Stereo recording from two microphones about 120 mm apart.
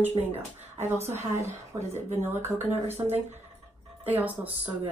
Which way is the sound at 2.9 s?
60° right (ahead or behind).